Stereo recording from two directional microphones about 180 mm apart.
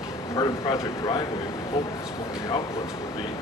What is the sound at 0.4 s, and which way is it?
Speech, 25° left (ahead or behind).